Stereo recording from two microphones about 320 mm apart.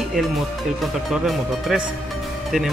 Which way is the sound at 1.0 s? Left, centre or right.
Centre.